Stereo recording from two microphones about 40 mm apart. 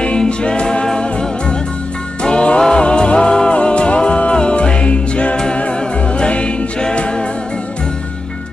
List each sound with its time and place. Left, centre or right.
0.0 s music: left
2.2 s music: left